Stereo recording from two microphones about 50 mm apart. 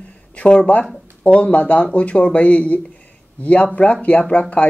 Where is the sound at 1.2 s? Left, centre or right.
Left.